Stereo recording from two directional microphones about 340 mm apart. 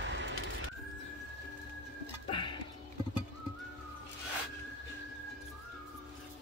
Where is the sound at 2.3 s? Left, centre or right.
Centre.